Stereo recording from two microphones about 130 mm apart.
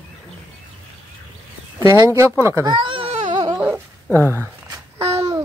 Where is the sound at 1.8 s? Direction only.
20° right (ahead or behind).